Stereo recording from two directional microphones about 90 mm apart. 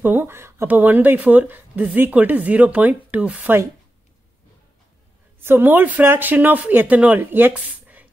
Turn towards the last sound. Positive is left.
turn(degrees=-25)  # may be behind; listen again after turning